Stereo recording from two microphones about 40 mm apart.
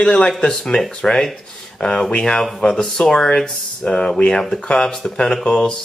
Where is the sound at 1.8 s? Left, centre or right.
Left.